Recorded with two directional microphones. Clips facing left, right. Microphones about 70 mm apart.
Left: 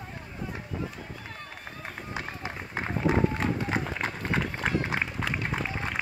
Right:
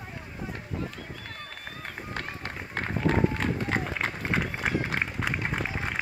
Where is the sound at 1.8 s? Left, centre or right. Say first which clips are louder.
Even; centre.